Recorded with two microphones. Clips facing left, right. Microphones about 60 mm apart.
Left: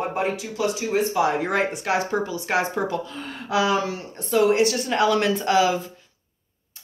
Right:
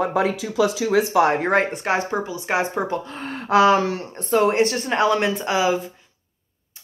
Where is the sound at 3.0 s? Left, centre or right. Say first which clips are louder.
Right 3 dB; right.